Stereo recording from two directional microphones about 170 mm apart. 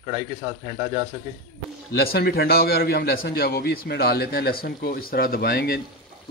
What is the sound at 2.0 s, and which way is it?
A man's voice, 65° left (ahead or behind).